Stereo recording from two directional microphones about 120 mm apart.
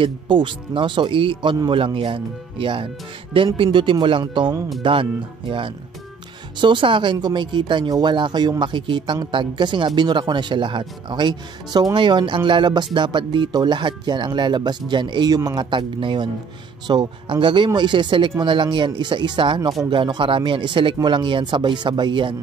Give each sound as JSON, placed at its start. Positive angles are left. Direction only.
{"t": 0.0, "sound": "speech", "side_deg": -45}
{"t": 6.6, "sound": "speech", "side_deg": -40}